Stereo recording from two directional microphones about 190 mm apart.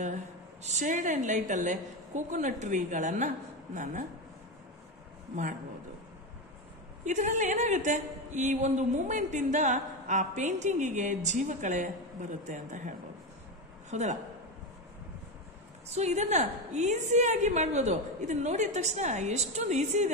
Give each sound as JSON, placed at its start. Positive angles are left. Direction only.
{"t": 0.7, "sound": "a woman's voice", "side_deg": -40}
{"t": 5.3, "sound": "a man's voice", "side_deg": -40}
{"t": 7.1, "sound": "a woman's voice", "side_deg": -40}
{"t": 15.9, "sound": "a woman's voice", "side_deg": -35}